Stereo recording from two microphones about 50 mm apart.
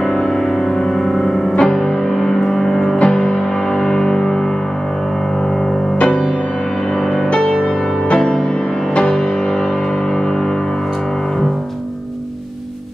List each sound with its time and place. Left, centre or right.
0.0 s music: centre
5.9 s music: centre
7.0 s music: centre
7.2 s music: left